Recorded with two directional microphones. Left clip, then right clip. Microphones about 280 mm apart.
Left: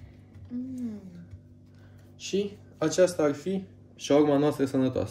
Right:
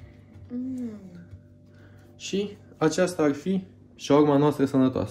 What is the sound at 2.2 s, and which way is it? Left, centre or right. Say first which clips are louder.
Speech: even; right.